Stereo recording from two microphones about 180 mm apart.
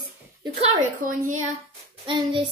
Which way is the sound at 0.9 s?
45° right (ahead or behind).